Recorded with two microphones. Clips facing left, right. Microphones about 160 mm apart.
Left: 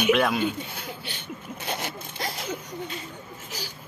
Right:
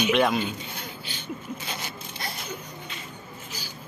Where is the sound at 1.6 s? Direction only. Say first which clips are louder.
Left 4 dB; 60° left (ahead or behind).